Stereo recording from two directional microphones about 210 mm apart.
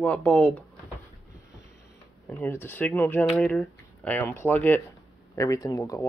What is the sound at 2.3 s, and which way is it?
Speech, 10° left (ahead or behind).